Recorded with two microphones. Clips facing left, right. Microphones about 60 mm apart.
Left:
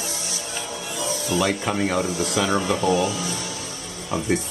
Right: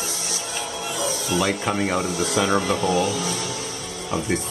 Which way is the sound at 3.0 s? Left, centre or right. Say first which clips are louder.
Right 1 dB; right.